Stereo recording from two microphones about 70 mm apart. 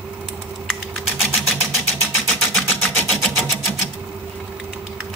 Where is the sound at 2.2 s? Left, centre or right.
Centre.